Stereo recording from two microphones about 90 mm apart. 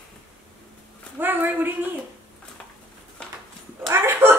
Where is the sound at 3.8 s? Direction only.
30° right (ahead or behind).